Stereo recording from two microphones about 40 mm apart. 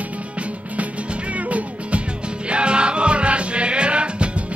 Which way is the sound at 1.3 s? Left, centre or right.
Right.